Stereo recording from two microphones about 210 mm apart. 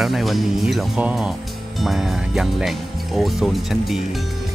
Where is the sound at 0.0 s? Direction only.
Centre (ahead or behind).